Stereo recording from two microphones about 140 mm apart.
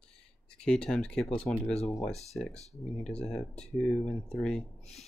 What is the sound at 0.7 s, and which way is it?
Speech, 5° left (ahead or behind).